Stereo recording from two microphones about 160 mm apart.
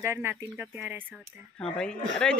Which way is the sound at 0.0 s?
15° right (ahead or behind).